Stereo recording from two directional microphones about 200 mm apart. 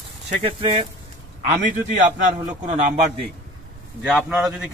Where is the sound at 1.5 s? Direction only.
40° right (ahead or behind).